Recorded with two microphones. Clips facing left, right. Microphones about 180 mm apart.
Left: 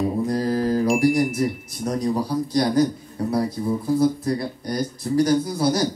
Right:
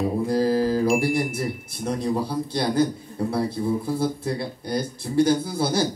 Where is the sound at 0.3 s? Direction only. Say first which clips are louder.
Right 2 dB; 30° right (ahead or behind).